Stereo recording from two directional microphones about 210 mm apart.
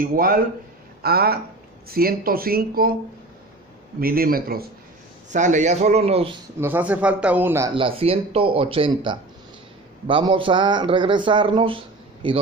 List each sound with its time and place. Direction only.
0.0 s speech: 40° right (ahead or behind)
4.0 s a man's voice: 45° right (ahead or behind); by 6.3 s 30° right (ahead or behind)
6.6 s a man's voice: 10° right (ahead or behind)
7.7 s a man's voice: 25° right (ahead or behind)